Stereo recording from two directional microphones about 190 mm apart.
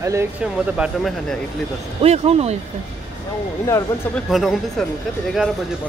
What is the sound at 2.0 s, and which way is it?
Speech, 30° right (ahead or behind).